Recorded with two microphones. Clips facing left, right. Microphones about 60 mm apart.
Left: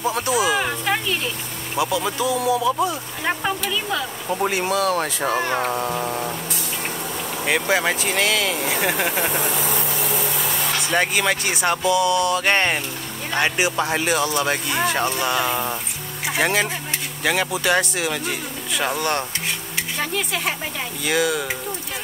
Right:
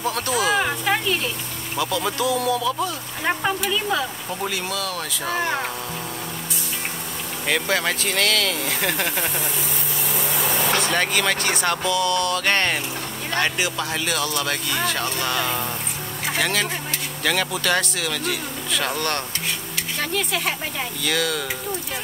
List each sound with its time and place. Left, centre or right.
0.0 s speech: centre
0.6 s a sound: centre
1.8 s speech: centre
4.3 s speech: left
7.4 s speech: centre
10.9 s speech: centre